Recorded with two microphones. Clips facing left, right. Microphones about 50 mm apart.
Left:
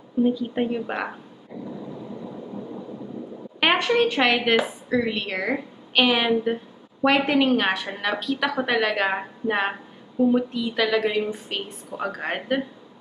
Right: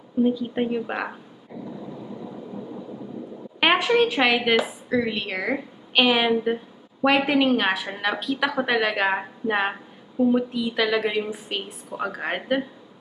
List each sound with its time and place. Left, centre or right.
0.2 s a woman's voice: centre
3.5 s a woman's voice: centre